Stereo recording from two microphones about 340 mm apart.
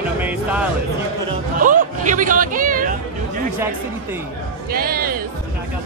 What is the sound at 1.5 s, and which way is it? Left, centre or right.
Speech, right.